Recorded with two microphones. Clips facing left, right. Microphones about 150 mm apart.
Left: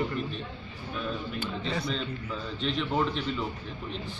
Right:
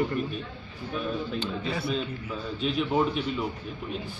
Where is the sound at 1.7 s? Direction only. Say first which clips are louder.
Right 1 dB; 5° right (ahead or behind).